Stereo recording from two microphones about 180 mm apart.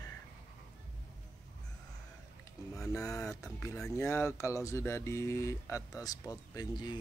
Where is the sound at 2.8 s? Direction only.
20° left (ahead or behind).